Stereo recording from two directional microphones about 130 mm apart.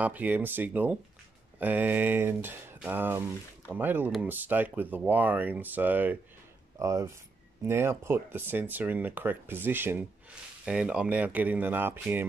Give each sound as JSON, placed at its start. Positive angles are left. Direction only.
{"t": 0.0, "sound": "speech", "side_deg": -10}
{"t": 6.8, "sound": "speech", "side_deg": -25}